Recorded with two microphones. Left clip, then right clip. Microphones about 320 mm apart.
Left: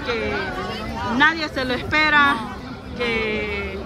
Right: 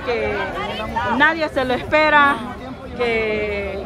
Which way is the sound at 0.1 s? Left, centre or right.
Centre.